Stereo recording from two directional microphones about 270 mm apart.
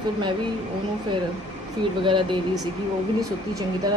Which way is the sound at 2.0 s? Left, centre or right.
Centre.